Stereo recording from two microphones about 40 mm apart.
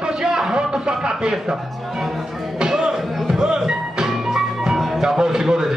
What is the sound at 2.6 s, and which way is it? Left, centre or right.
Music, centre.